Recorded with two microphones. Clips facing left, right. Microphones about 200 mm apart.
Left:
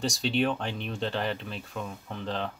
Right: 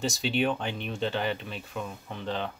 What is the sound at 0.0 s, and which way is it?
Speech, centre (ahead or behind).